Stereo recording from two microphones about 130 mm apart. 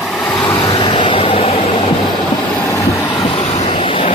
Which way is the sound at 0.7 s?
40° left (ahead or behind).